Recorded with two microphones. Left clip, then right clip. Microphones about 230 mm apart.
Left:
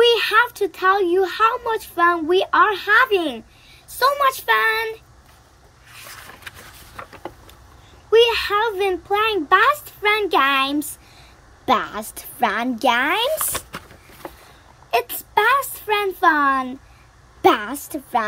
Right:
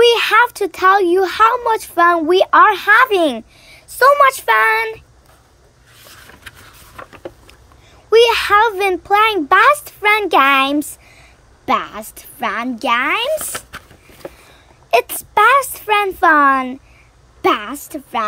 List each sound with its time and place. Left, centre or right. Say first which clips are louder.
0.0 s speech: right 4 dB; centre
8.1 s a child's voice: right 5 dB; centre
14.9 s a child's voice: right 6 dB; right; by 17.7 s centre